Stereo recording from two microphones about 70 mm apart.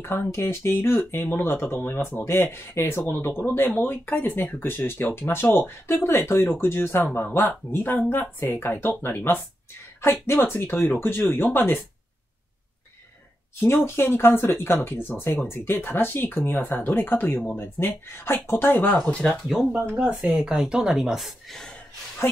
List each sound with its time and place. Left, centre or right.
0.0 s speech: left
10.2 s speech: left
13.8 s speech: left
18.7 s speech: left
19.4 s a woman's voice: centre
19.7 s a woman's voice: right; by 21.7 s centre